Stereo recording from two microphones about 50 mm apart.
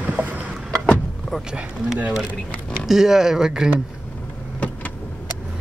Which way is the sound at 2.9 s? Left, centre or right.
Centre.